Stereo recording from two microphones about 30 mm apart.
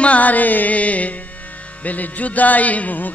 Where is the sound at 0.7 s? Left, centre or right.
Left.